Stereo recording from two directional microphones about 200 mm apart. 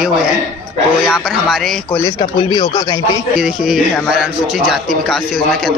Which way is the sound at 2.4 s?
25° left (ahead or behind).